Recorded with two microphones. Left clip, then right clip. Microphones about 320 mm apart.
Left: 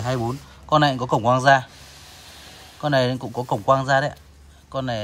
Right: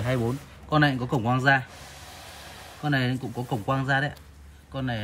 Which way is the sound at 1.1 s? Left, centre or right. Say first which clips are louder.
Left 9 dB; centre.